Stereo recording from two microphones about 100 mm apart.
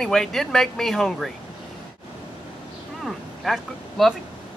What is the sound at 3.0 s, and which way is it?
Speech, centre (ahead or behind).